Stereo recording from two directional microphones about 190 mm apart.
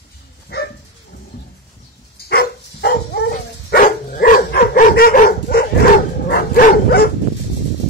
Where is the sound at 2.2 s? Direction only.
55° left (ahead or behind).